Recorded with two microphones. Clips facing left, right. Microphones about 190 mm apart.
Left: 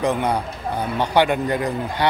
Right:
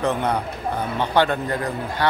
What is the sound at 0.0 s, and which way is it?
A man's voice, 10° left (ahead or behind).